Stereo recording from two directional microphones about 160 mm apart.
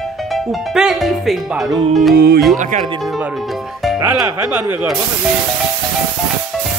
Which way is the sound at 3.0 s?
Centre (ahead or behind).